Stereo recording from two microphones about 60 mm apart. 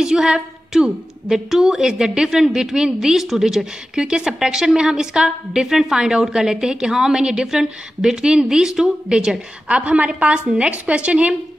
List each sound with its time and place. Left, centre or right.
0.0 s a woman's voice: centre